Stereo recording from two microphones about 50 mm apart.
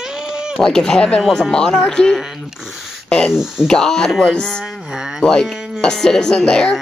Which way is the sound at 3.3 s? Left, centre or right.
Centre.